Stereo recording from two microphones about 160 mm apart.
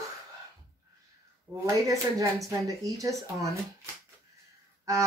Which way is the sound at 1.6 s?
20° right (ahead or behind).